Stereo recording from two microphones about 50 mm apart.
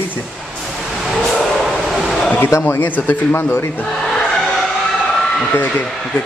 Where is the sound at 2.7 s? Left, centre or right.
Left.